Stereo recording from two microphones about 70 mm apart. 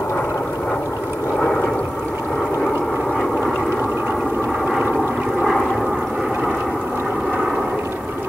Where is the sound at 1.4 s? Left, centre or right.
Centre.